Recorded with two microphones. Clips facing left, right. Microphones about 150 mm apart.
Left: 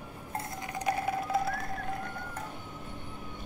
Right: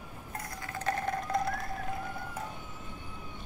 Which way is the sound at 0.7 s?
15° left (ahead or behind).